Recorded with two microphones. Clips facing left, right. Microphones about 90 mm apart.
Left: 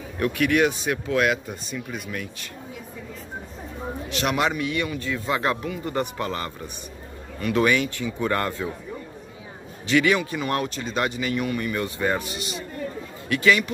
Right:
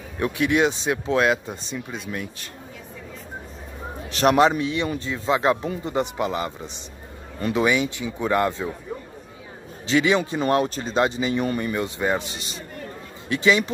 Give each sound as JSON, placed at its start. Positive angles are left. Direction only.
{"t": 0.2, "sound": "speech", "side_deg": -20}
{"t": 4.1, "sound": "speech", "side_deg": -40}
{"t": 9.8, "sound": "speech", "side_deg": -25}